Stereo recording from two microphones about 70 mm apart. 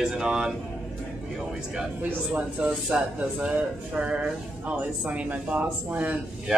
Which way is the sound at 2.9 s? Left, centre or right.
Centre.